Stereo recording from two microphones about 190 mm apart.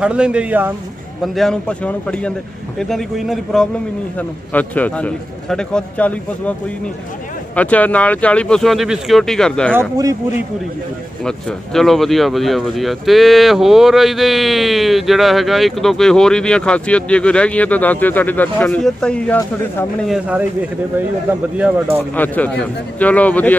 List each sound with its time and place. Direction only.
0.0 s a man's voice: 5° right (ahead or behind)
7.5 s speech: 10° left (ahead or behind)
9.8 s speech: 15° right (ahead or behind)
11.2 s speech: centre (ahead or behind)
20.1 s speech: 5° right (ahead or behind)
21.5 s speech: 10° right (ahead or behind)
22.1 s a man's voice: 10° left (ahead or behind)